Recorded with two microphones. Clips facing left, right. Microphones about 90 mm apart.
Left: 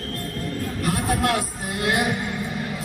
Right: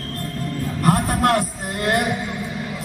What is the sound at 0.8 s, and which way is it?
Music, 45° right (ahead or behind).